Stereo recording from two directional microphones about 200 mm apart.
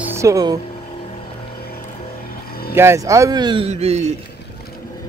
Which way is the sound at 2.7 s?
15° right (ahead or behind).